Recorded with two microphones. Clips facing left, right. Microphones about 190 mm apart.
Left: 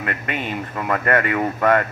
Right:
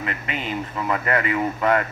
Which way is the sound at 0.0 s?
55° left (ahead or behind).